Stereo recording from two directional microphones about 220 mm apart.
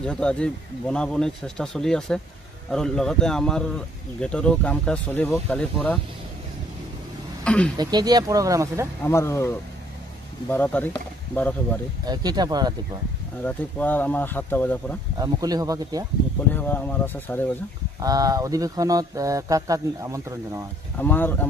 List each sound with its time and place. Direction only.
0.0 s speech: 5° left (ahead or behind)
7.4 s speech: 5° left (ahead or behind)
7.7 s speech: 20° right (ahead or behind)
9.0 s speech: 10° left (ahead or behind)
12.0 s speech: 20° right (ahead or behind)
13.4 s speech: 5° left (ahead or behind)
15.1 s speech: 15° right (ahead or behind)
16.5 s speech: 10° left (ahead or behind)
18.0 s speech: 15° right (ahead or behind)
21.0 s speech: 10° left (ahead or behind)